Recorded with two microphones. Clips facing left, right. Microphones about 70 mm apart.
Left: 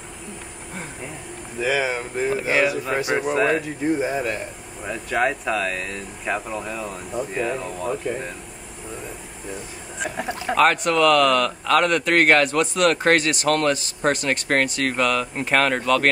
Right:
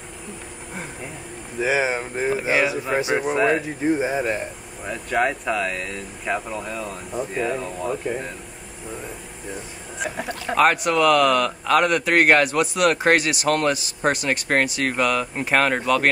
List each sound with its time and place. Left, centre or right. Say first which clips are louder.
1.6 s speech: right 1 dB; right
3.2 s speech: left 1 dB; centre
4.0 s speech: right 1 dB; right
4.8 s speech: even; centre
9.9 s chicken: even; centre
10.5 s speech: even; centre